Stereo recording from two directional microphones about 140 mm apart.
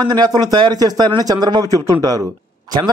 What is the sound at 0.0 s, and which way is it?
A man's voice, 30° right (ahead or behind).